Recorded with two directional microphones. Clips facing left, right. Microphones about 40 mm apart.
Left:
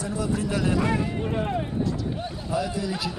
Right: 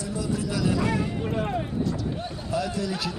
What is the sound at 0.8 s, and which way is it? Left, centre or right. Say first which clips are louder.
Speech: left 1 dB; left.